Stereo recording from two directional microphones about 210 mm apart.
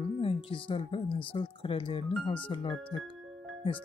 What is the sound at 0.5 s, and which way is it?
Speech, 25° left (ahead or behind).